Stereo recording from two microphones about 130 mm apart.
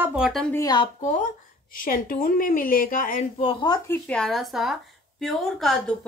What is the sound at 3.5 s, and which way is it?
Speech, 35° left (ahead or behind).